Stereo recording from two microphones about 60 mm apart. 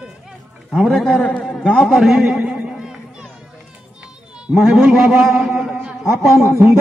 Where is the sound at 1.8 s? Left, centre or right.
Centre.